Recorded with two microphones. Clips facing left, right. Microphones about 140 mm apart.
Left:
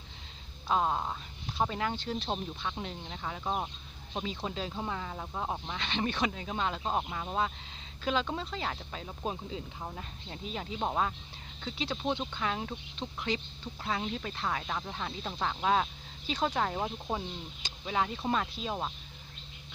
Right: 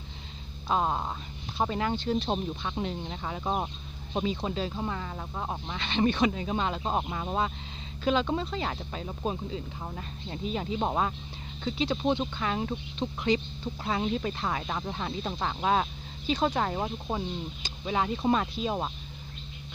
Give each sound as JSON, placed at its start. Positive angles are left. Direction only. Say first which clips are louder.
{"t": 0.7, "sound": "speech", "louder": "right 2 dB", "side_deg": -5}
{"t": 2.2, "sound": "speech", "louder": "right 4 dB", "side_deg": -15}
{"t": 4.2, "sound": "speech", "louder": "right 6 dB", "side_deg": -10}
{"t": 4.6, "sound": "speech", "louder": "right 4 dB", "side_deg": 0}
{"t": 10.8, "sound": "speech", "louder": "even", "side_deg": -15}
{"t": 12.4, "sound": "speech", "louder": "right 4 dB", "side_deg": 0}
{"t": 13.0, "sound": "speech", "louder": "right 7 dB", "side_deg": -10}